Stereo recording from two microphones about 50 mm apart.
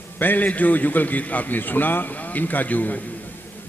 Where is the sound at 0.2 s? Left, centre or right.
Left.